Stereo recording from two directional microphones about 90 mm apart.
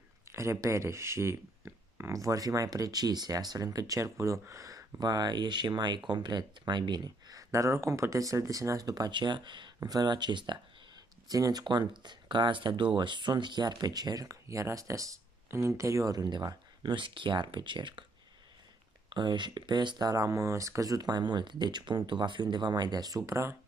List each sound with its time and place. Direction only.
0.3 s speech: 30° right (ahead or behind)
9.1 s speech: 60° right (ahead or behind)
9.8 s speech: 45° right (ahead or behind)
11.2 s speech: 45° right (ahead or behind); by 18.0 s 60° right (ahead or behind)
19.0 s speech: 55° right (ahead or behind); by 23.5 s 35° right (ahead or behind)